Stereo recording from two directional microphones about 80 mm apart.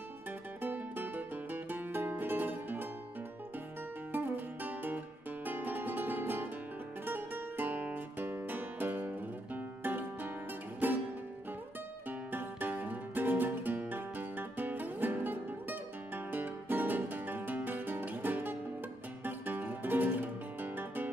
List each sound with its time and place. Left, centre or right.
0.6 s music: right
4.1 s guitar: right
7.1 s music: right
12.3 s music: right